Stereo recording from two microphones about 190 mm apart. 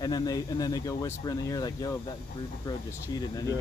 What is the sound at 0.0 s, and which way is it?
Speech, 20° left (ahead or behind).